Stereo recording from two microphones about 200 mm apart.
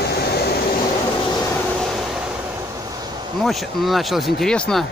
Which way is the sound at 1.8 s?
Centre (ahead or behind).